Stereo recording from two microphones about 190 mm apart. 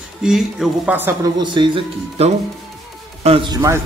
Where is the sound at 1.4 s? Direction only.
25° right (ahead or behind).